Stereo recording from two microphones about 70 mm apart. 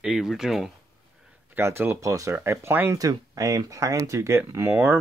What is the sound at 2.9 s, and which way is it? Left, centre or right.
Speech, right.